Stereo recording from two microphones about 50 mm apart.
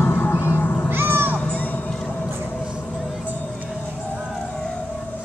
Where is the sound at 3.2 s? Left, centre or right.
Left.